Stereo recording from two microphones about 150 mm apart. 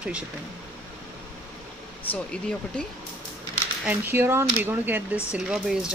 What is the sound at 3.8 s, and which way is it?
Speech, 15° right (ahead or behind).